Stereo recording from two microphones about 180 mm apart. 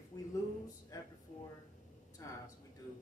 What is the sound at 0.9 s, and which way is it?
Speech, 20° left (ahead or behind).